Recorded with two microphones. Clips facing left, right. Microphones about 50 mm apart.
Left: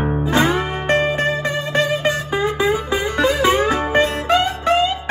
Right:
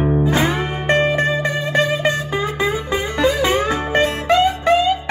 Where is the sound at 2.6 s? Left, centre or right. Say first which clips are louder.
Left 2 dB; left.